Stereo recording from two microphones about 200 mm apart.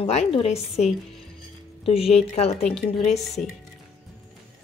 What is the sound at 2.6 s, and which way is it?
Speech, 5° left (ahead or behind).